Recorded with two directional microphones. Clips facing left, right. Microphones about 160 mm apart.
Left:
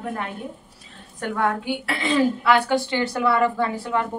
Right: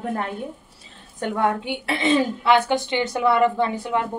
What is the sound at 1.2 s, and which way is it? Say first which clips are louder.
A woman's voice: right 1 dB; 20° right (ahead or behind).